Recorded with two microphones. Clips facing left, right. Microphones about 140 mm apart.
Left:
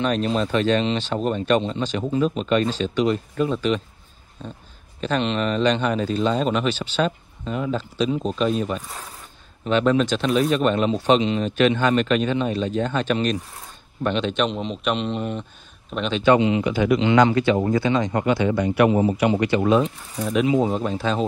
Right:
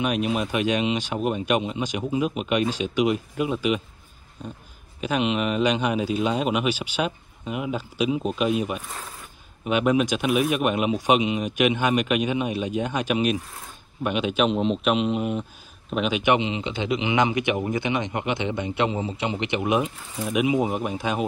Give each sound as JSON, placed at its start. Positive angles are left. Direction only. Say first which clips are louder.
{"t": 0.0, "sound": "speech", "louder": "left 2 dB", "side_deg": -10}
{"t": 5.0, "sound": "a man's voice", "louder": "left 1 dB", "side_deg": -10}